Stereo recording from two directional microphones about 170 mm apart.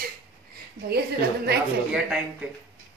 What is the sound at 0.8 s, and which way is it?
Speech, 70° right (ahead or behind).